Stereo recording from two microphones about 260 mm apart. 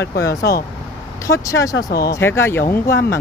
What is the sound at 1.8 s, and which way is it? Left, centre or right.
Speech, left.